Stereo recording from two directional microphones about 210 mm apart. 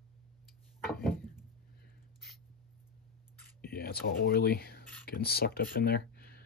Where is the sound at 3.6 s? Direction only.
45° left (ahead or behind).